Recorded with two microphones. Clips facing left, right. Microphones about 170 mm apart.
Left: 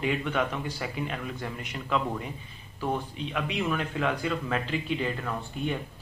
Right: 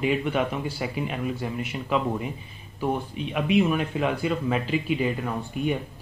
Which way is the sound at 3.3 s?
15° right (ahead or behind).